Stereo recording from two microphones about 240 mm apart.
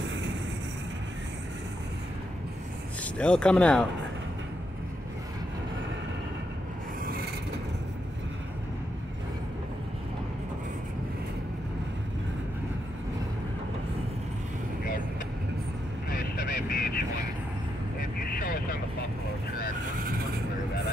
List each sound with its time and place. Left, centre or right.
0.0 s vehicle: right
3.0 s speech: centre
16.1 s vehicle: left
18.2 s vehicle: left